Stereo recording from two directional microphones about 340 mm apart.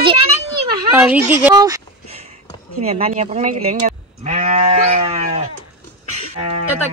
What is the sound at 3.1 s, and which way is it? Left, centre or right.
Speech, centre.